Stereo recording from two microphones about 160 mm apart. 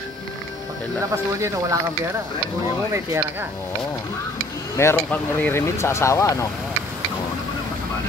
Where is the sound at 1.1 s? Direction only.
20° right (ahead or behind).